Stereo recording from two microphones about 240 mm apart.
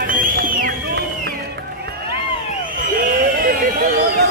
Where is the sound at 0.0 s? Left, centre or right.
Right.